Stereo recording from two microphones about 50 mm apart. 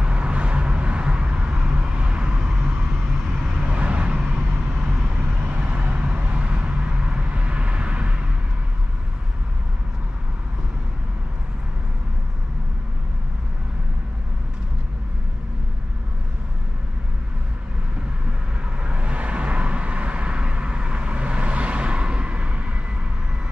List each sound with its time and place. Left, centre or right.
0.0 s vehicle: right
4.6 s vehicle: centre
5.2 s vehicle: right
18.9 s vehicle: right